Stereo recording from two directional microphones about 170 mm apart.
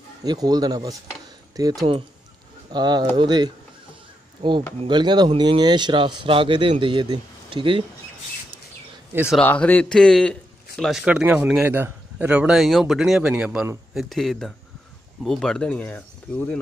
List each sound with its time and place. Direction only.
0.2 s speech: 25° right (ahead or behind)
9.4 s a man's voice: 10° left (ahead or behind)